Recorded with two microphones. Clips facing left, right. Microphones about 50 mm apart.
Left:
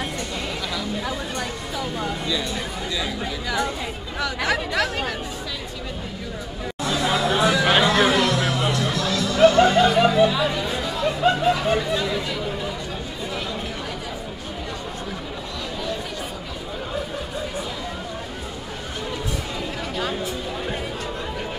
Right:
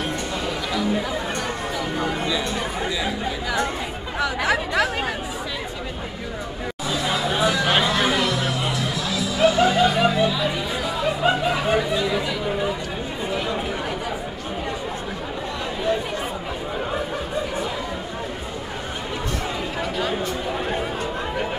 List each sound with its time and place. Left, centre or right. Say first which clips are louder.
1.8 s speech: right 1 dB; centre
6.8 s music: left 2 dB; centre
10.4 s chatter: left 1 dB; centre